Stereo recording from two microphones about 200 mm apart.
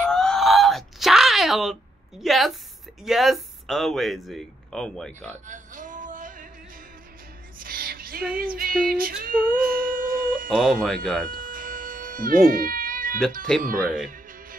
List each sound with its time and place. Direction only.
0.0 s a sound: 5° left (ahead or behind)
3.0 s speech: centre (ahead or behind)
5.5 s music: 40° right (ahead or behind)
7.5 s music: 45° right (ahead or behind)
8.4 s a sound: 45° right (ahead or behind)
10.6 s speech: centre (ahead or behind)
11.2 s cat: 45° right (ahead or behind)
13.5 s speech: centre (ahead or behind)